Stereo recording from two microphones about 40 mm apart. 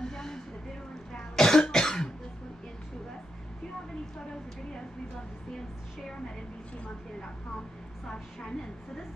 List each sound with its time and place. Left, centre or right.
0.0 s vehicle: centre
1.1 s cough: centre
8.1 s a woman's voice: centre